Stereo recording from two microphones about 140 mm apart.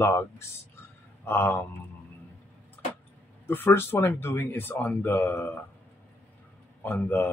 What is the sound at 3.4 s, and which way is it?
Speech, 15° left (ahead or behind).